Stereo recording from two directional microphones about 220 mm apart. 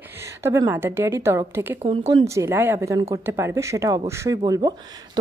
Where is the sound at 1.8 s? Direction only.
30° right (ahead or behind).